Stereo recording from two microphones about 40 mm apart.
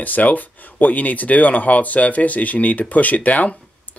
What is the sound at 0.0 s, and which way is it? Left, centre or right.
Speech, left.